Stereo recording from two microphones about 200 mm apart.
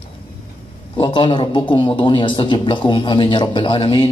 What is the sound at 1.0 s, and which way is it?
A man's voice, 25° left (ahead or behind).